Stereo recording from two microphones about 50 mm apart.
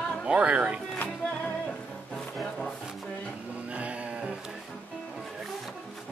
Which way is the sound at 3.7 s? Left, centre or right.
Right.